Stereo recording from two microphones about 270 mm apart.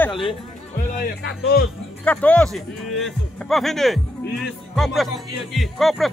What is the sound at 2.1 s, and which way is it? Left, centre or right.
Speech, centre.